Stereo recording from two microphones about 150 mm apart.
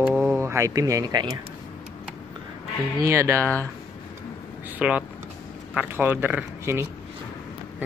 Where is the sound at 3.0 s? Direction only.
20° right (ahead or behind).